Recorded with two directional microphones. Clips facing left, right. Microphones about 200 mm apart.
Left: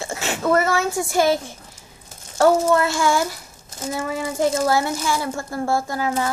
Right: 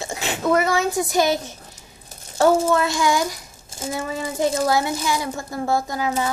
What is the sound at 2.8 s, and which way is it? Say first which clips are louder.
A woman's voice: even; 15° right (ahead or behind).